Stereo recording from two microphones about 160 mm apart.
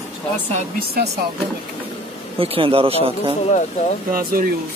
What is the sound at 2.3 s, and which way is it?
Speech, 35° right (ahead or behind).